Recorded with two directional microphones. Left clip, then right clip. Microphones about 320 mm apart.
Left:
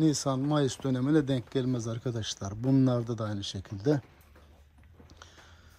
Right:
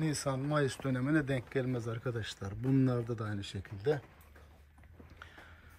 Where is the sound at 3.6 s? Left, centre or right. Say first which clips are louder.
Left 4 dB; centre.